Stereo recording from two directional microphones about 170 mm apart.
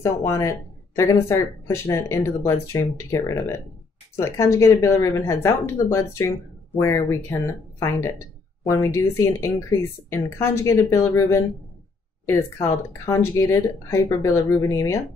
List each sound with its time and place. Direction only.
0.0 s speech: 15° left (ahead or behind)